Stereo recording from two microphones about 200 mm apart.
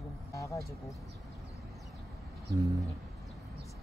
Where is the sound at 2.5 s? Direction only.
15° right (ahead or behind).